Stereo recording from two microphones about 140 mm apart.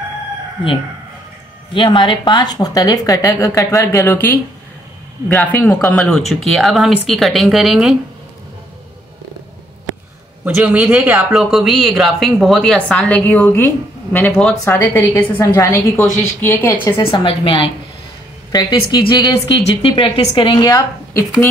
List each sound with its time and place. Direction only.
1.7 s a woman's voice: 35° left (ahead or behind); by 7.9 s centre (ahead or behind)
10.4 s a man's voice: 10° right (ahead or behind)
11.3 s a woman's voice: centre (ahead or behind)
14.6 s a woman's voice: 15° left (ahead or behind)
17.0 s a woman's voice: 40° left (ahead or behind)
21.1 s speech: 20° left (ahead or behind)